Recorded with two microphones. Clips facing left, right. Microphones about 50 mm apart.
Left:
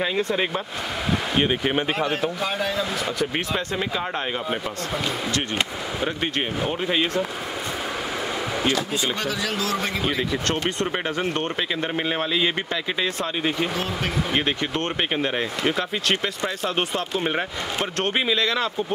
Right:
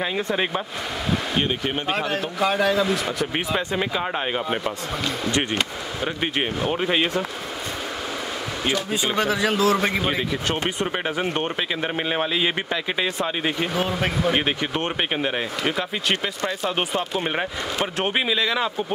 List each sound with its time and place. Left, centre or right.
0.2 s speech: centre
1.3 s speech: centre
3.2 s speech: centre
6.7 s speech: centre
8.6 s speech: centre
10.3 s speech: centre